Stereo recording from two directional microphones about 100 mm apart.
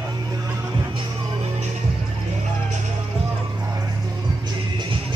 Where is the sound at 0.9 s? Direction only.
55° right (ahead or behind).